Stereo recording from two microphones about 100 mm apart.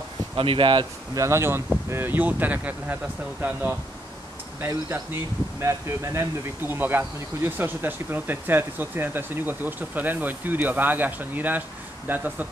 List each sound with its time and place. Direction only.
0.4 s speech: 60° right (ahead or behind)
1.1 s speech: 30° right (ahead or behind)